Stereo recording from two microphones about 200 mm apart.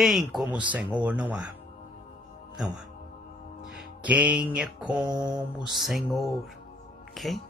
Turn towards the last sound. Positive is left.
turn(degrees=0)  # may be behind; listen again after turning